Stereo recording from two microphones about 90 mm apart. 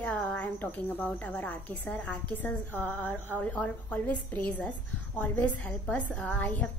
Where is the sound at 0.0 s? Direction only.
10° left (ahead or behind).